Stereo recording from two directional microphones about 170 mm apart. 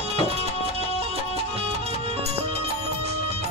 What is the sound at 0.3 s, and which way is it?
Music, 35° right (ahead or behind).